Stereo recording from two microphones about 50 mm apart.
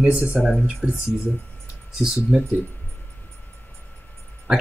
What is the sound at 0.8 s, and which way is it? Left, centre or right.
Speech, right.